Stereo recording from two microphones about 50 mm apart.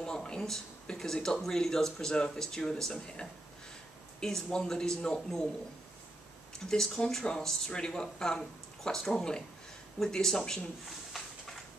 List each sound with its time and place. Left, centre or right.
0.0 s speech: centre
6.6 s speech: centre